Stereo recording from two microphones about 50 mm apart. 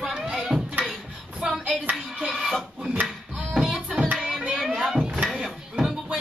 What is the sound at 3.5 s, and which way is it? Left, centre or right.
Music, centre.